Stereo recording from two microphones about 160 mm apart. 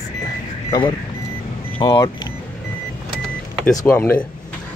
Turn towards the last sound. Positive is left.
turn(degrees=15)  # may be behind; listen again after turning